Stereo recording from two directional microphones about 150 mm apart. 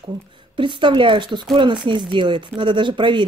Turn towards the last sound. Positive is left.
turn(degrees=-30)  # may be behind; listen again after turning